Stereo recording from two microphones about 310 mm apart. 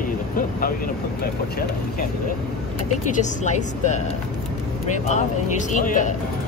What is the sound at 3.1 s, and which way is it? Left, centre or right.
Speech, left.